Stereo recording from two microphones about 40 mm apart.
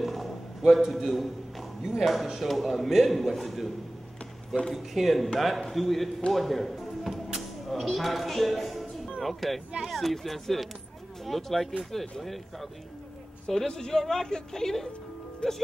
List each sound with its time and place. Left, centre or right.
0.0 s a man's voice: centre
4.7 s a woman's voice: centre
15.4 s speech: left